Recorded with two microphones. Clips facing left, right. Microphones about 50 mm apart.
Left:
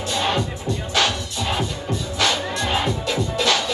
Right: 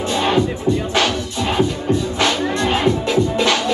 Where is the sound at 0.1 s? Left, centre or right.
Centre.